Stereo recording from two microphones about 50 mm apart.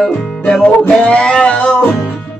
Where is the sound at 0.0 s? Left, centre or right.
Centre.